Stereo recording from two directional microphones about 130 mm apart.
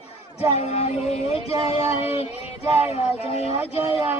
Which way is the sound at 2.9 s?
50° left (ahead or behind).